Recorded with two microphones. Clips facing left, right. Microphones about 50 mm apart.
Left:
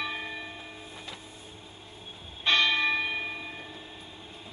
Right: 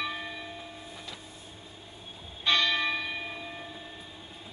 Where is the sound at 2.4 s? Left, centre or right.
Left.